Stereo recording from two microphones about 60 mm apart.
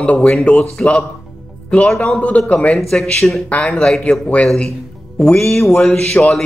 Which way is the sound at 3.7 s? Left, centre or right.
Centre.